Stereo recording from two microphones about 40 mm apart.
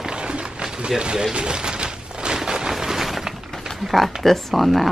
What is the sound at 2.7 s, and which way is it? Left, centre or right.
Shatter, centre.